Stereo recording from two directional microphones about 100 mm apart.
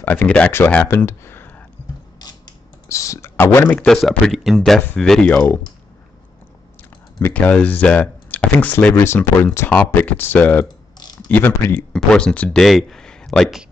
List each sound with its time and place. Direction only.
0.0 s speech: 15° left (ahead or behind)
2.1 s mechanisms: 40° left (ahead or behind); by 3.7 s 20° left (ahead or behind)
3.7 s speech: 5° left (ahead or behind)
6.8 s speech: 20° left (ahead or behind)
8.9 s speech: 25° left (ahead or behind)
11.9 s speech: 10° left (ahead or behind)